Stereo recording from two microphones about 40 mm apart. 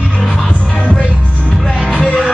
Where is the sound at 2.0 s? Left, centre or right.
Centre.